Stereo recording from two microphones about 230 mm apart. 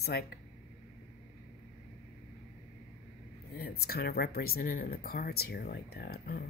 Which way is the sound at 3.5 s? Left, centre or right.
Left.